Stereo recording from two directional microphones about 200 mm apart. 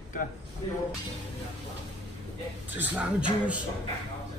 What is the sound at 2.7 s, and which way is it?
Speech, 10° right (ahead or behind).